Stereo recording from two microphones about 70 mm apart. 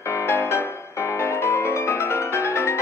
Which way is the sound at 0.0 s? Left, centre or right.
Left.